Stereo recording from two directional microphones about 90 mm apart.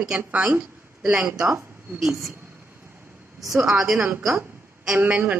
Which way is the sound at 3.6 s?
5° right (ahead or behind).